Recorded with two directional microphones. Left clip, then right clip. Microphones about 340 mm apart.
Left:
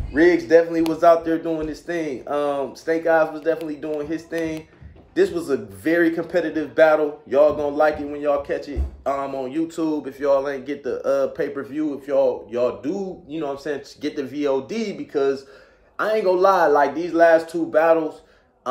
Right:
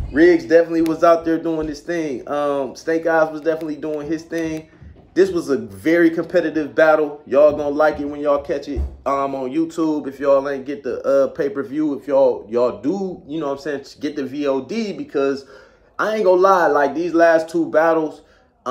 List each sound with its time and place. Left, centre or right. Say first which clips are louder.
0.1 s speech: right 2 dB; centre